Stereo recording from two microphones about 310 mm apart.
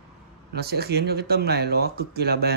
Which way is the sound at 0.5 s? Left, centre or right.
Right.